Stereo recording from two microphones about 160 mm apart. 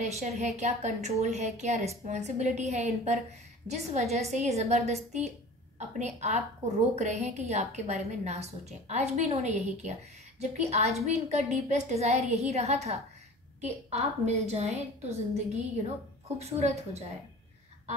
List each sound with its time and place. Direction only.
0.0 s a woman's voice: 45° right (ahead or behind)